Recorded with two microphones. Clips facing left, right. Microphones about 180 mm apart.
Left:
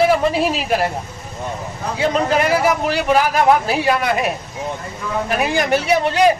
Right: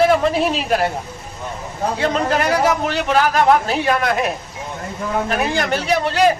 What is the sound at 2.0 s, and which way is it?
A man's voice, 5° left (ahead or behind).